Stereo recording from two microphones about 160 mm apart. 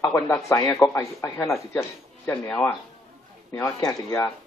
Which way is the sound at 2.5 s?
5° left (ahead or behind).